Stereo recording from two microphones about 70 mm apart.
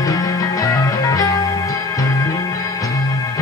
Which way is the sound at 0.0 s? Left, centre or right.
Left.